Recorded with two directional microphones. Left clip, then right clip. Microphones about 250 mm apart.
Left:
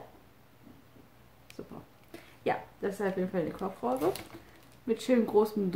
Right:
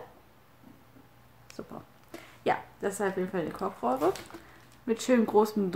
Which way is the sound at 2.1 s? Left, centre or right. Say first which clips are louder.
Right 3 dB; centre.